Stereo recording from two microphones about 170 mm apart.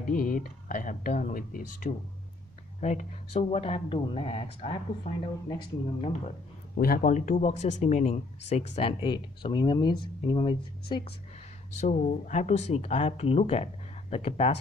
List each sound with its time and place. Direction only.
0.0 s speech: 55° left (ahead or behind); by 6.3 s 35° left (ahead or behind)
6.8 s speech: 55° left (ahead or behind); by 11.1 s 30° left (ahead or behind)
11.8 s speech: 45° left (ahead or behind)